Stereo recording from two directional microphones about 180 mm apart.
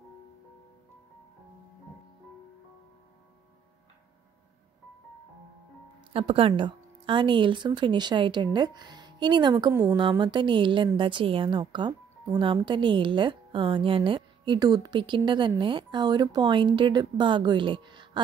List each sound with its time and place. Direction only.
6.1 s a woman's voice: 30° right (ahead or behind)